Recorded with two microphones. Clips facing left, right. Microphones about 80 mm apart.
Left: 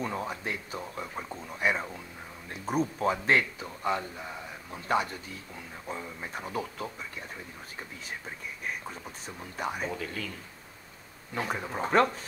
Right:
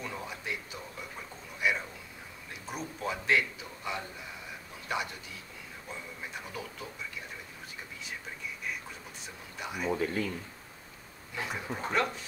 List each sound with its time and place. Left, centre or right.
0.0 s a sound: left
4.8 s speech: left
9.6 s speech: left
9.8 s speech: right
11.3 s speech: left